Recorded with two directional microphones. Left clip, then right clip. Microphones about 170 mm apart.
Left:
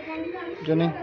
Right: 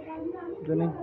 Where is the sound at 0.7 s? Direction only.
25° left (ahead or behind).